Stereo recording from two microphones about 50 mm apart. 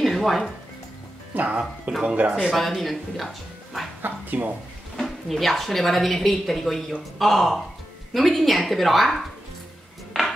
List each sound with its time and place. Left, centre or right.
0.0 s music: centre
1.3 s speech: right
2.5 s a woman's voice: centre
4.0 s speech: right
4.9 s a woman's voice: centre